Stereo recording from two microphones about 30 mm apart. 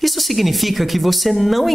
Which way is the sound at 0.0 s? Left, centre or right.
Centre.